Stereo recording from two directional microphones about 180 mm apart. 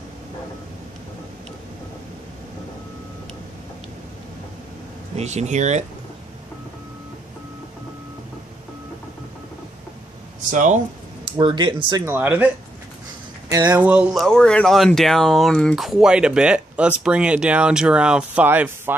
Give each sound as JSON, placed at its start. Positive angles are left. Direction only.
{"t": 5.1, "sound": "speech", "side_deg": -40}
{"t": 10.5, "sound": "speech", "side_deg": -45}
{"t": 11.3, "sound": "speech", "side_deg": -25}
{"t": 12.1, "sound": "speech", "side_deg": -10}
{"t": 13.5, "sound": "speech", "side_deg": -20}
{"t": 13.8, "sound": "speech", "side_deg": -10}
{"t": 14.2, "sound": "speech", "side_deg": 5}